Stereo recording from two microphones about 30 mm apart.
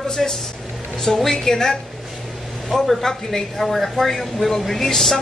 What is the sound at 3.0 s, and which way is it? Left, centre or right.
A woman's voice, centre.